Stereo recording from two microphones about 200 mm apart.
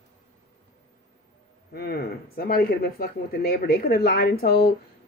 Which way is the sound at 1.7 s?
50° left (ahead or behind).